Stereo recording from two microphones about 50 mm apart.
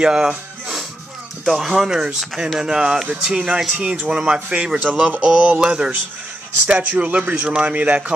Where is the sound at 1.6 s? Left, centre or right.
Centre.